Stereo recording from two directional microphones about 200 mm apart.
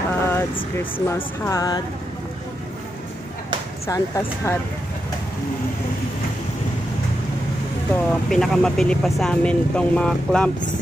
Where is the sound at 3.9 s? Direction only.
15° left (ahead or behind).